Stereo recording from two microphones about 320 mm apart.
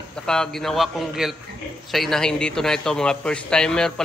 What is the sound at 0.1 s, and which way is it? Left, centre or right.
A man's voice, centre.